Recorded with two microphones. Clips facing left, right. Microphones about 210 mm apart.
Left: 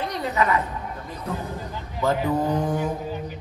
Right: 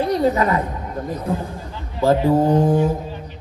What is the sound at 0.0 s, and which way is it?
Speech, 35° right (ahead or behind).